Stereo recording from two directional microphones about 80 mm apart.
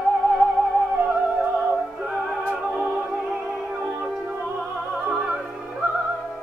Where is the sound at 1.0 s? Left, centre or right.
Centre.